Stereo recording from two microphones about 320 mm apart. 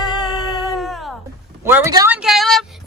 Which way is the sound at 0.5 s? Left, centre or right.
Centre.